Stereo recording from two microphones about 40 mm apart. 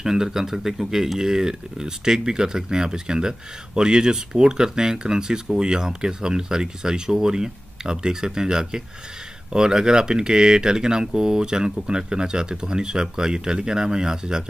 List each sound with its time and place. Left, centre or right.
0.0 s speech: centre
1.2 s speech: centre